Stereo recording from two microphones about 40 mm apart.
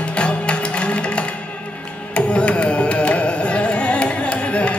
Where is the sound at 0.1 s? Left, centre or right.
Left.